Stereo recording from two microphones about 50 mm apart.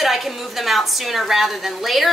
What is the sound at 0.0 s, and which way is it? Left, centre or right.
A woman's voice, centre.